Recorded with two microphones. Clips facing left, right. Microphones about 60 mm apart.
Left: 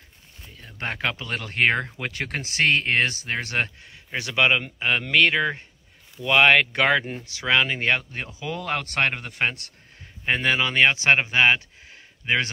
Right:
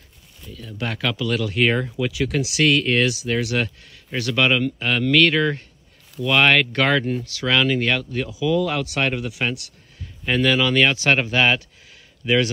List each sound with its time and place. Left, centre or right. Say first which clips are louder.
0.4 s speech: right 4 dB; left
4.1 s speech: right 2 dB; left